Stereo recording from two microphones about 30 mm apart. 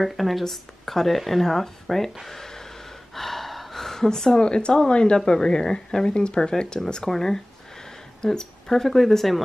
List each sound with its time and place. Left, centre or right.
0.0 s speech: centre
0.4 s speech: centre
2.2 s a sound: centre
3.2 s gasp: centre
4.1 s speech: left
6.1 s speech: left
6.8 s speech: centre